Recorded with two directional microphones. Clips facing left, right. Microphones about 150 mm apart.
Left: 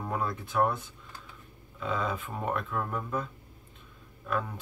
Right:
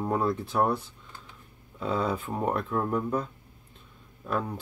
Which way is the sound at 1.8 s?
35° right (ahead or behind).